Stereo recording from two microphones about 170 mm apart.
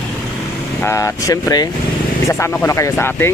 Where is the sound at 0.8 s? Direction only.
15° left (ahead or behind).